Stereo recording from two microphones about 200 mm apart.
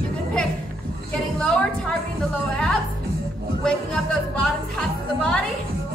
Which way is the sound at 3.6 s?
5° left (ahead or behind).